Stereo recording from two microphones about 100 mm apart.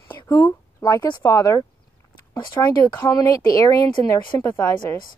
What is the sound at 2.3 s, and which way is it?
Speech, 50° left (ahead or behind).